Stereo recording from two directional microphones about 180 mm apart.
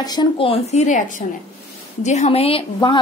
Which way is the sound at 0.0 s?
25° left (ahead or behind).